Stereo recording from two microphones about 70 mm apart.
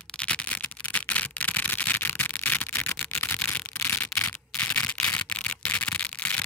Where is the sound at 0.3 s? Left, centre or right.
Centre.